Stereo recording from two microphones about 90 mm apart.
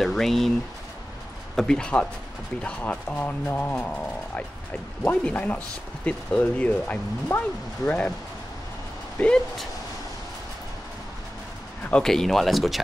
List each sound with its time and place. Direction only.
0.0 s speech: 5° left (ahead or behind)
1.6 s speech: 10° left (ahead or behind)
9.2 s speech: 15° left (ahead or behind)
11.9 s speech: 5° left (ahead or behind)